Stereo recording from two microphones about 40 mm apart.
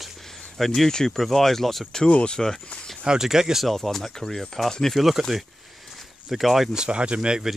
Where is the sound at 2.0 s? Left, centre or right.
Left.